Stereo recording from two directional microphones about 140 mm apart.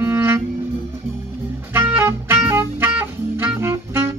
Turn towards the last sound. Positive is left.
turn(degrees=-20)  # may be behind; listen again after turning